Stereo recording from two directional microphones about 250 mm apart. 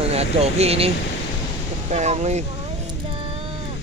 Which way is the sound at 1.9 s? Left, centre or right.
Right.